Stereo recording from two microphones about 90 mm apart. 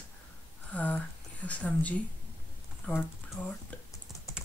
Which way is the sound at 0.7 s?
15° left (ahead or behind).